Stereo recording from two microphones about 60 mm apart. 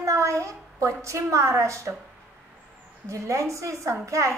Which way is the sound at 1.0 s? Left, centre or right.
Right.